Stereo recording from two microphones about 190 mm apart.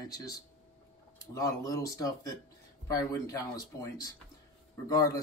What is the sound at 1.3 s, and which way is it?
Speech, 15° left (ahead or behind).